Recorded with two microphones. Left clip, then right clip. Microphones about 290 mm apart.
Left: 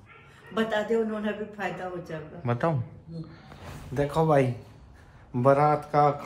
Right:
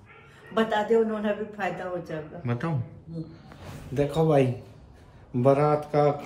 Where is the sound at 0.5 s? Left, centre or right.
Centre.